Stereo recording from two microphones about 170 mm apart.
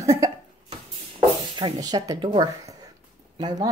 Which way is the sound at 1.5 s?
25° right (ahead or behind).